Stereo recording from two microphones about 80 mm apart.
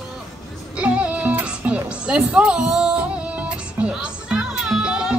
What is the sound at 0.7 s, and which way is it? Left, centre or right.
Music, centre.